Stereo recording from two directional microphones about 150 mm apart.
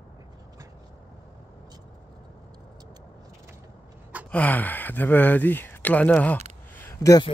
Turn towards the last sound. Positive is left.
turn(degrees=20)  # may be behind; listen again after turning